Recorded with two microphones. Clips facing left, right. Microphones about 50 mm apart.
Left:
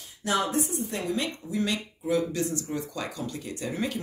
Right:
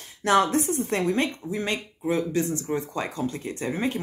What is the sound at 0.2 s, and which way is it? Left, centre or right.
A woman's voice, right.